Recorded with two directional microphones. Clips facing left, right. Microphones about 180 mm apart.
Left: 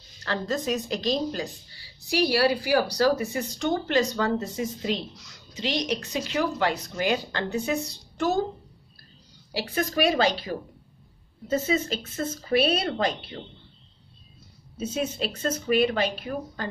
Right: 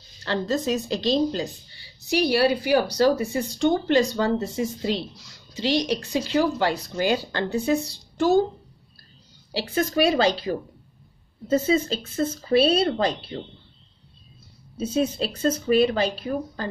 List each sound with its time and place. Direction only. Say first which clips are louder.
0.2 s speech: right 4 dB; 30° right (ahead or behind)
9.5 s speech: right 3 dB; 25° right (ahead or behind)
14.8 s speech: right 5 dB; 30° right (ahead or behind)